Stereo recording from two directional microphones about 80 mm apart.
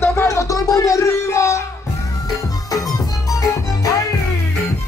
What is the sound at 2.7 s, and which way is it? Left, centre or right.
Music, left.